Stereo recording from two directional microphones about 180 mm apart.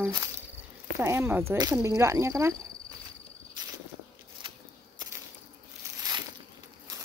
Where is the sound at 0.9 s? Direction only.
15° right (ahead or behind).